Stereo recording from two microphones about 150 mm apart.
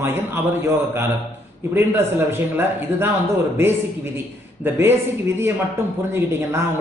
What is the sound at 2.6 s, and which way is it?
Speech, 15° right (ahead or behind).